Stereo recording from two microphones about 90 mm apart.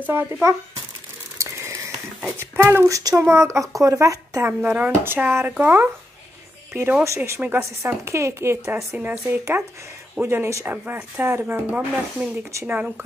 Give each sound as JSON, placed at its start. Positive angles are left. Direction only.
{"t": 0.0, "sound": "speech", "side_deg": -25}
{"t": 1.4, "sound": "a sound", "side_deg": -30}
{"t": 2.5, "sound": "speech", "side_deg": -30}
{"t": 4.5, "sound": "speech", "side_deg": -20}